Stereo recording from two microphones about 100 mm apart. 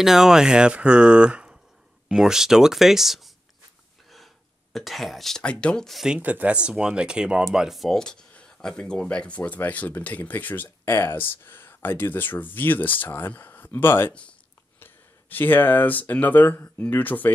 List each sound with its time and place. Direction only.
0.0 s speech: 5° right (ahead or behind)
4.7 s speech: centre (ahead or behind); by 17.3 s 20° left (ahead or behind)